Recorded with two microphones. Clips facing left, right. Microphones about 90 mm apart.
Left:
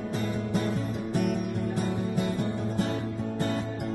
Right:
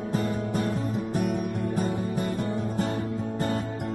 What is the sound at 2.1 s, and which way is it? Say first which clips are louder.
Music: right 1 dB; 40° right (ahead or behind).